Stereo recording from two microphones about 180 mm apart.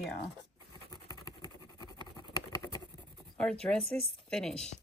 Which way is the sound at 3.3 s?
5° left (ahead or behind).